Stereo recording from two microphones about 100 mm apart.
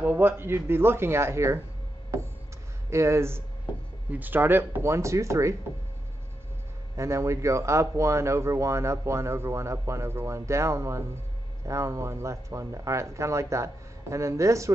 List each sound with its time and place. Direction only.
0.0 s speech: 15° right (ahead or behind)
2.9 s speech: 25° right (ahead or behind)
7.0 s speech: 30° right (ahead or behind)